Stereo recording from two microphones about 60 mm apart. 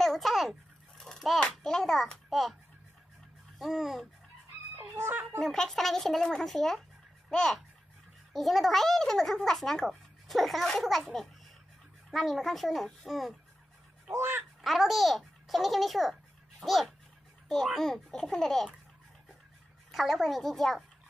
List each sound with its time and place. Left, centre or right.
0.0 s a sound: centre
1.4 s a child's voice: centre
3.5 s a child's voice: centre
4.7 s speech: right
5.4 s a child's voice: centre
14.6 s a child's voice: centre
19.9 s a child's voice: centre